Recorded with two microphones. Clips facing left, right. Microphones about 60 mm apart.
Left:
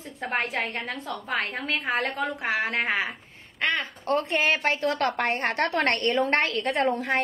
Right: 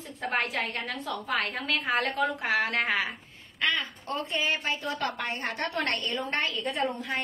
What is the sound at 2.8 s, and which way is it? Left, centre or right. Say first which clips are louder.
Speech: left 2 dB; left.